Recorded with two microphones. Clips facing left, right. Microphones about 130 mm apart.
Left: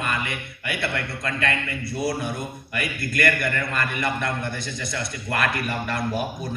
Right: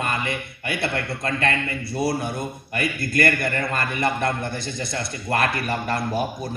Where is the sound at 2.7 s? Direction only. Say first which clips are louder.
Right 4 dB; 35° right (ahead or behind).